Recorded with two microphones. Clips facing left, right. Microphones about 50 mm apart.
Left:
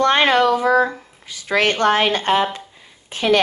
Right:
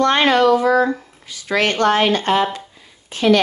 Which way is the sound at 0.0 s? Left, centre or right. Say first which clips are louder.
Right 1 dB; left.